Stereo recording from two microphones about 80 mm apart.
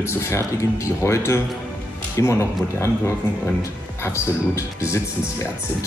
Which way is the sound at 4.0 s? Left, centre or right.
Left.